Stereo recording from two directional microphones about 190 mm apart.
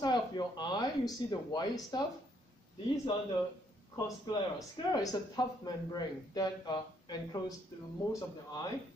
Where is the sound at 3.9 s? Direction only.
25° left (ahead or behind).